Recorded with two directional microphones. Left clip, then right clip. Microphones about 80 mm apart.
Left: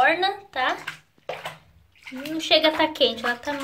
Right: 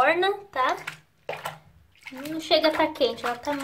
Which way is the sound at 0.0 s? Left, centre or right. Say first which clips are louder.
Left 1 dB; right.